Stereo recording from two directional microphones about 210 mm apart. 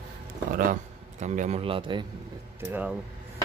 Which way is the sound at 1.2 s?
35° right (ahead or behind).